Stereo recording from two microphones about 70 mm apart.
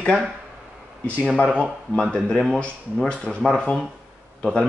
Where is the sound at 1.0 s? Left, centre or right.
Centre.